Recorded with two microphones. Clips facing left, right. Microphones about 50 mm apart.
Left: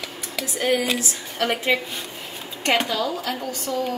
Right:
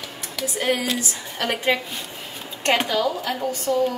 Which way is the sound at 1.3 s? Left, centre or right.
Centre.